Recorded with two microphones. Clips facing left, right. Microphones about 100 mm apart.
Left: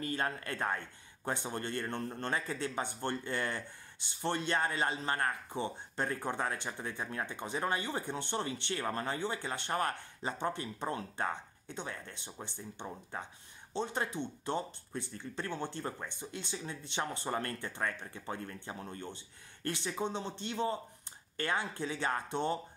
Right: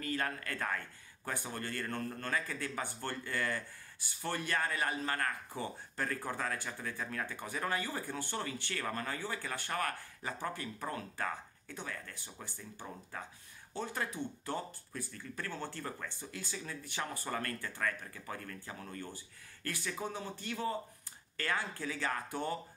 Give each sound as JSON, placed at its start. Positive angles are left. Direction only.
{"t": 0.0, "sound": "speech", "side_deg": 25}